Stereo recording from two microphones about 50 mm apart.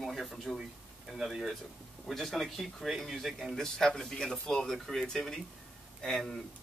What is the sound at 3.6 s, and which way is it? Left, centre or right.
Speech, centre.